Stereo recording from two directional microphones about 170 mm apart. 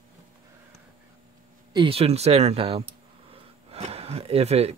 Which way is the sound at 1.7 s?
30° right (ahead or behind).